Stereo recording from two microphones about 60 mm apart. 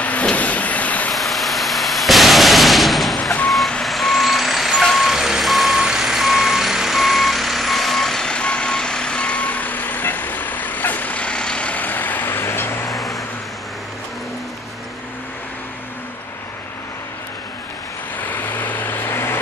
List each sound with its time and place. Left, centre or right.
0.0 s vehicle: left
1.1 s a sound: centre
3.8 s vehicle: centre
4.8 s reversing beeps: centre; by 12.8 s left
12.9 s vehicle: centre
18.3 s vehicle: left